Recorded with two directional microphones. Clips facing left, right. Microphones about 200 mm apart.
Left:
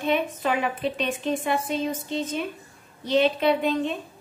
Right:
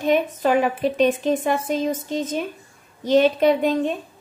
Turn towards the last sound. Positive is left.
turn(degrees=-45)  # may be behind; listen again after turning